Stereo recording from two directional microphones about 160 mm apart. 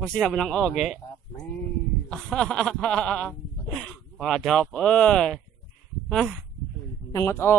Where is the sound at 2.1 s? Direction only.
5° left (ahead or behind).